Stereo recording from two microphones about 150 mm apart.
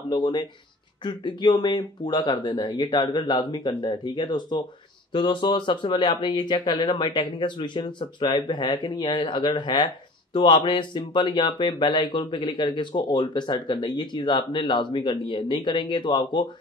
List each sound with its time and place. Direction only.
0.1 s speech: 30° left (ahead or behind)